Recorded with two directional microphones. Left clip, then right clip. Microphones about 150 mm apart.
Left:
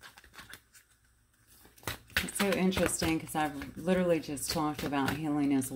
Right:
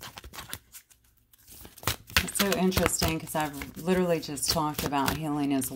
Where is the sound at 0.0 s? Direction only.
90° right.